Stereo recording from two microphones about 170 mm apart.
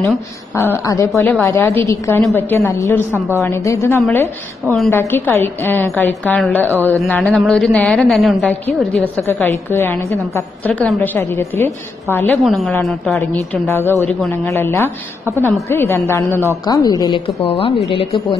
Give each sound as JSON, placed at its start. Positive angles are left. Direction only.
{"t": 0.6, "sound": "a woman's voice", "side_deg": 15}
{"t": 12.4, "sound": "a woman's voice", "side_deg": 0}
{"t": 13.7, "sound": "a woman's voice", "side_deg": 15}
{"t": 17.4, "sound": "speech", "side_deg": 35}